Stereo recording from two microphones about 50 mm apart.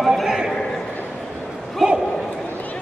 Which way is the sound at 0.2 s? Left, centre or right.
Centre.